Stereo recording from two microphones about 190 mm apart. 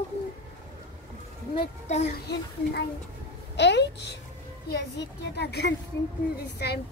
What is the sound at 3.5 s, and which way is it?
Speech, 65° left (ahead or behind).